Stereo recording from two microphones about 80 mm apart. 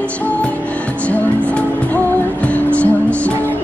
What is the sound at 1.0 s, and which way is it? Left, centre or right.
Music, centre.